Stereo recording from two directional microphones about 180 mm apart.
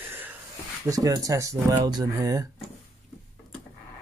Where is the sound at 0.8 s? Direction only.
20° right (ahead or behind).